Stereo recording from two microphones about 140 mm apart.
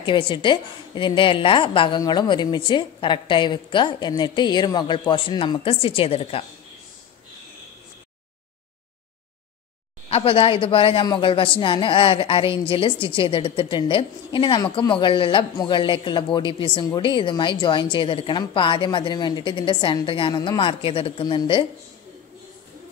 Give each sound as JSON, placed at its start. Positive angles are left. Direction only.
{"t": 0.0, "sound": "a woman's voice", "side_deg": 35}
{"t": 10.0, "sound": "a woman's voice", "side_deg": 40}